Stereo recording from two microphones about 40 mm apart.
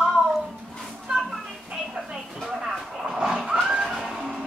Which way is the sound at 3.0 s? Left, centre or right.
Centre.